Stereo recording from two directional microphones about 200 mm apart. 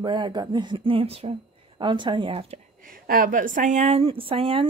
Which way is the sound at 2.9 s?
45° right (ahead or behind).